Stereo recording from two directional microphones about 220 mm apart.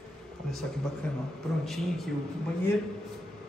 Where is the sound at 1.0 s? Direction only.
5° left (ahead or behind).